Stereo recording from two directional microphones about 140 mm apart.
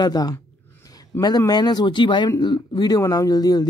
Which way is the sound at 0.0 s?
30° left (ahead or behind).